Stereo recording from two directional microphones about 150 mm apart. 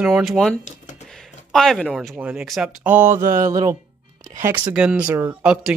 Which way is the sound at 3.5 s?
25° right (ahead or behind).